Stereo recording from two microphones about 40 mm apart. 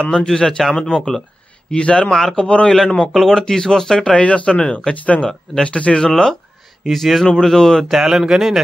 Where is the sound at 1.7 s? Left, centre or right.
Left.